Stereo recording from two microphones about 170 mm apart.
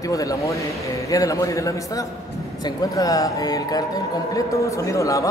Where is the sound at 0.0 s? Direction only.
20° left (ahead or behind).